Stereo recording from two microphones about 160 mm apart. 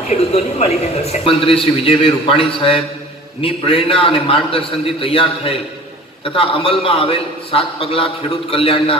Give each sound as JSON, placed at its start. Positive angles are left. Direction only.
{"t": 0.1, "sound": "speech", "side_deg": 40}